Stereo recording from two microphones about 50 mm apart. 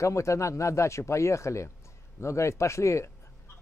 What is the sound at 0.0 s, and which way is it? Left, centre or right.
Speech, left.